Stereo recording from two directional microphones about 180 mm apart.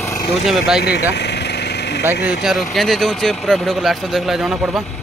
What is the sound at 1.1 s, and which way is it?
Engine, 70° left (ahead or behind).